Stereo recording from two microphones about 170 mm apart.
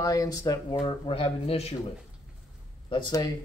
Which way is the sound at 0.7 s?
30° left (ahead or behind).